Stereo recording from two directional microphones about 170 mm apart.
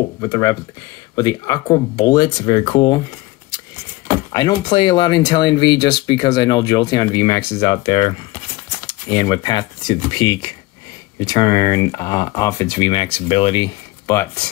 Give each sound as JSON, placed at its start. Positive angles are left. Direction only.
{"t": 0.2, "sound": "speech", "side_deg": 20}
{"t": 4.3, "sound": "speech", "side_deg": 25}
{"t": 12.9, "sound": "speech", "side_deg": 35}